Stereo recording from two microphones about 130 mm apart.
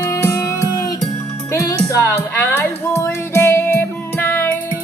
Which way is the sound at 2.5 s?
15° left (ahead or behind).